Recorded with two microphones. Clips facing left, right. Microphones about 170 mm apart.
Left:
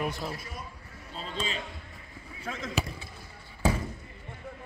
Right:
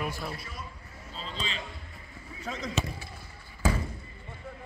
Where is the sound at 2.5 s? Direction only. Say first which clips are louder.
Right 1 dB; centre (ahead or behind).